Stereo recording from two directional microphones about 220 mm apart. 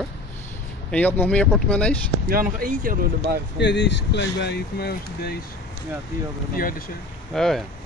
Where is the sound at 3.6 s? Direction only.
50° left (ahead or behind).